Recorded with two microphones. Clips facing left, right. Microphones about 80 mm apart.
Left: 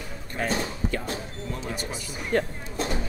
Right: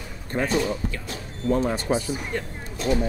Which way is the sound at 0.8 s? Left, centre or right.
Left.